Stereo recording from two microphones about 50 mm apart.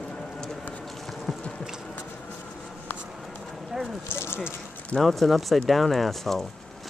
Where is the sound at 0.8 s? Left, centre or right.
Centre.